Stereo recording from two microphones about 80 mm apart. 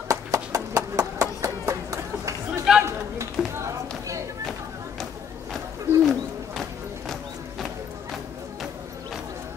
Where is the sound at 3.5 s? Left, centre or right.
Right.